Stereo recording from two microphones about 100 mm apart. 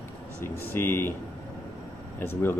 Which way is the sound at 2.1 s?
25° left (ahead or behind).